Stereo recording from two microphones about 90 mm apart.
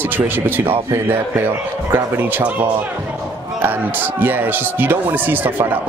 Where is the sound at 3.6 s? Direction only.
20° right (ahead or behind).